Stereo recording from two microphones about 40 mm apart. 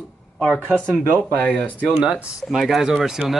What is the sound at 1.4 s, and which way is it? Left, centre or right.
Speech, left.